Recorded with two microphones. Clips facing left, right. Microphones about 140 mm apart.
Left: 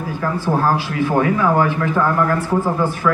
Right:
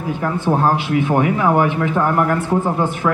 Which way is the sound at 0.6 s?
20° right (ahead or behind).